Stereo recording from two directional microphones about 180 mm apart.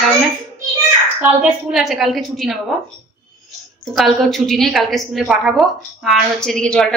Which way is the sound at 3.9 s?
Centre (ahead or behind).